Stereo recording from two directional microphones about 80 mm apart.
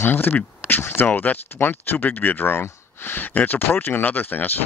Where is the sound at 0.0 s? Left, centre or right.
Left.